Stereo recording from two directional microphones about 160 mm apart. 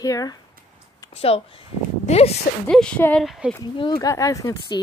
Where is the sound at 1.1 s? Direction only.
40° left (ahead or behind).